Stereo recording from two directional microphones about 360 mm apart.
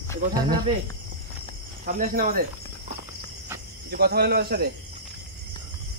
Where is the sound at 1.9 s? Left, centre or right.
Right.